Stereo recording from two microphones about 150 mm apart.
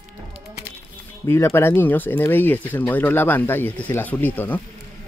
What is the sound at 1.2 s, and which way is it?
Speech, 15° left (ahead or behind).